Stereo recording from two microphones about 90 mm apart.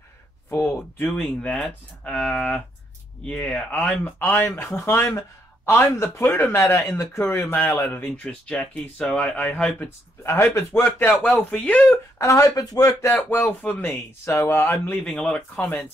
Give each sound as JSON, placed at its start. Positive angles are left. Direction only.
{"t": 0.5, "sound": "speech", "side_deg": 25}
{"t": 4.2, "sound": "speech", "side_deg": 25}
{"t": 6.2, "sound": "speech", "side_deg": 25}
{"t": 9.8, "sound": "speech", "side_deg": 30}
{"t": 12.2, "sound": "speech", "side_deg": 35}
{"t": 13.1, "sound": "speech", "side_deg": 25}
{"t": 15.1, "sound": "speech", "side_deg": 10}